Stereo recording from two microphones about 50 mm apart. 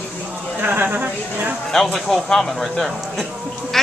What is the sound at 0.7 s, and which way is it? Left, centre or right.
Speech, right.